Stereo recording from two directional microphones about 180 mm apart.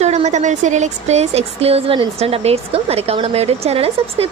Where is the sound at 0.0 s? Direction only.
40° right (ahead or behind).